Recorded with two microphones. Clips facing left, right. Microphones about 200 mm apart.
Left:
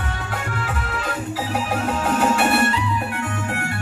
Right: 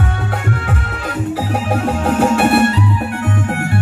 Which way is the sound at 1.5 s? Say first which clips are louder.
Right 3 dB; 60° right (ahead or behind).